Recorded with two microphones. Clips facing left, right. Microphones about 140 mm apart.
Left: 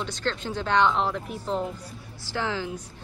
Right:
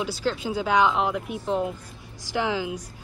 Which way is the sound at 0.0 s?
10° right (ahead or behind).